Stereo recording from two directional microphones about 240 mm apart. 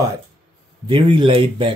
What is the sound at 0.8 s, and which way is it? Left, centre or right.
Speech, centre.